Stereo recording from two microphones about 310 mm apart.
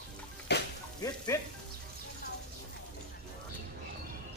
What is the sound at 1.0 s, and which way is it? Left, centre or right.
Speech, centre.